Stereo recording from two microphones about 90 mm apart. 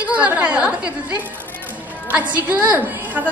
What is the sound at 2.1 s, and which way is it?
A woman's voice, 15° right (ahead or behind).